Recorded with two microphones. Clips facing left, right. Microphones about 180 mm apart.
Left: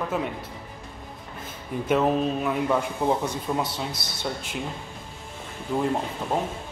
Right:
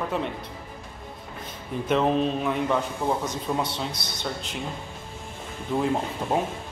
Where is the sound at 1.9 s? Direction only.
5° left (ahead or behind).